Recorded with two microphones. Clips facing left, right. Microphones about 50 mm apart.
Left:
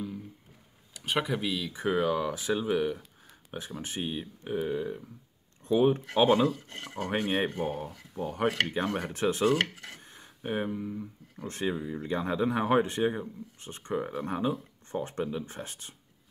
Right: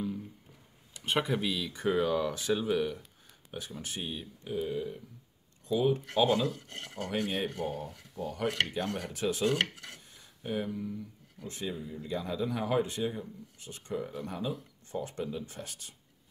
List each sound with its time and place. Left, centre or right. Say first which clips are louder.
1.0 s speech: even; centre; by 4.3 s left
4.5 s speech: left 3 dB; left
8.5 s speech: left 3 dB; left
9.1 s speech: left 3 dB; left
9.5 s speech: left 3 dB; centre
9.9 s a sound: left 5 dB; left
10.8 s speech: left 2 dB; left